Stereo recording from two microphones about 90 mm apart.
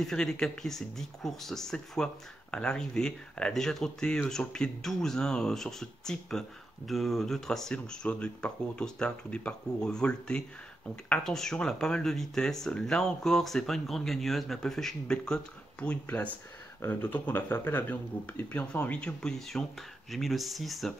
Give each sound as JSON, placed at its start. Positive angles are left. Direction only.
{"t": 0.0, "sound": "speech", "side_deg": 5}